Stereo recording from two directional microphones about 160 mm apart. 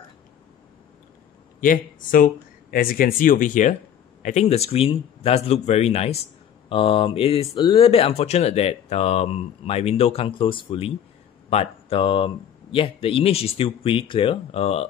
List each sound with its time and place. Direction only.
1.6 s speech: 55° left (ahead or behind); by 14.9 s 40° left (ahead or behind)